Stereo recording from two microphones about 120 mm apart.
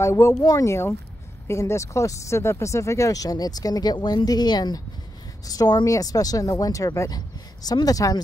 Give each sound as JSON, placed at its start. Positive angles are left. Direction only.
{"t": 0.0, "sound": "speech", "side_deg": 25}